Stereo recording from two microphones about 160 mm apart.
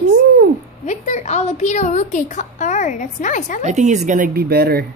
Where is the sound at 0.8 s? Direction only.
45° left (ahead or behind).